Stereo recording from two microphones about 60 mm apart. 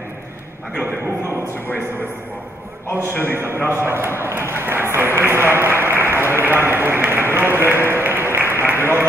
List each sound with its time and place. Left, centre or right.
3.2 s a man's voice: right
8.5 s applause: right